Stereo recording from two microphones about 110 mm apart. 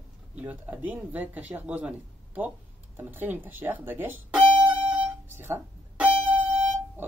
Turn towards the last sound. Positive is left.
turn(degrees=-15)  # may be behind; listen again after turning